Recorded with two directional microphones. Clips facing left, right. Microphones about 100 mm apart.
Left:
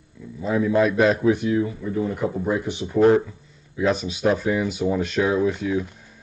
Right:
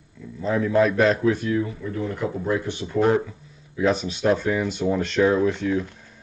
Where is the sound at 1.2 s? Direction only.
15° left (ahead or behind).